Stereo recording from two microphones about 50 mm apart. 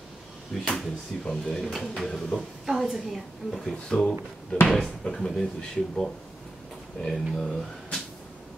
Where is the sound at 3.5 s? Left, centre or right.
Centre.